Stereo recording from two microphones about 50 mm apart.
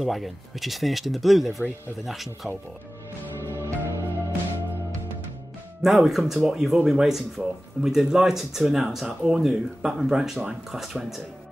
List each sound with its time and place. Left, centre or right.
0.0 s speech: centre
3.3 s music: right
5.8 s speech: centre